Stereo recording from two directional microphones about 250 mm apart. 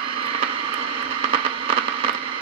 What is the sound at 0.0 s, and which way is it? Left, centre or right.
Vehicle, right.